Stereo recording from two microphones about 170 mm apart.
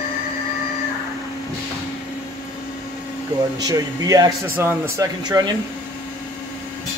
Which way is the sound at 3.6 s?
20° right (ahead or behind).